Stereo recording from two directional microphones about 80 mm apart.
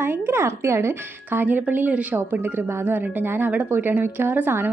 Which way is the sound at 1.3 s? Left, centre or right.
Right.